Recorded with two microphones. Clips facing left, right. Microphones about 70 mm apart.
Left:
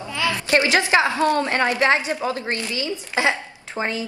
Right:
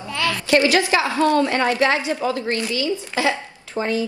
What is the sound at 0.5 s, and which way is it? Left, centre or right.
A woman's voice, left.